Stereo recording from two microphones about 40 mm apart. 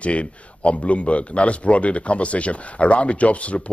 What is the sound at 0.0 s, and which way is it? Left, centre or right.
Speech, left.